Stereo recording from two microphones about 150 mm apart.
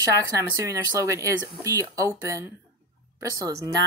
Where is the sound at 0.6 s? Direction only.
20° right (ahead or behind).